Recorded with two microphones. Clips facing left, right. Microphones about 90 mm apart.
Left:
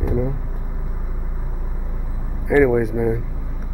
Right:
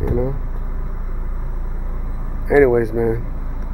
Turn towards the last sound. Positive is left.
turn(degrees=0)  # may be behind; listen again after turning